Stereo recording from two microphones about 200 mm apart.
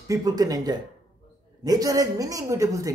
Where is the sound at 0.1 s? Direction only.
20° right (ahead or behind).